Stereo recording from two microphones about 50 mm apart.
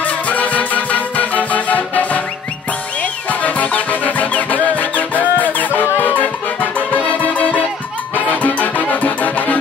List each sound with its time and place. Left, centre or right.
0.0 s music: left
3.3 s music: left